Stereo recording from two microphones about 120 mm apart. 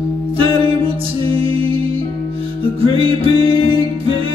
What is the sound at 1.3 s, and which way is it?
Music, 50° right (ahead or behind).